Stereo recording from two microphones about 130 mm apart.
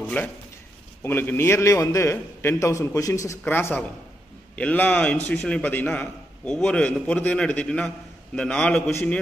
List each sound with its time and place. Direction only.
0.2 s a man's voice: 15° left (ahead or behind)